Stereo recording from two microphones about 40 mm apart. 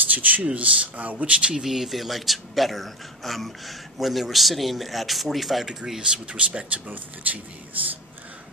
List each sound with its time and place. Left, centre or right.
0.1 s speech: right
1.5 s a man's voice: centre
5.7 s speech: centre
7.8 s speech: right